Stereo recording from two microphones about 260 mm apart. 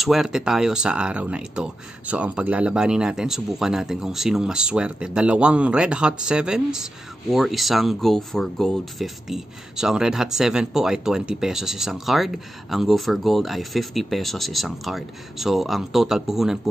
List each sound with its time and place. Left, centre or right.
0.0 s speech: centre